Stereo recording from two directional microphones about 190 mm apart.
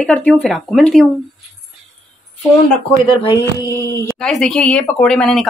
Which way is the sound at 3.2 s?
20° left (ahead or behind).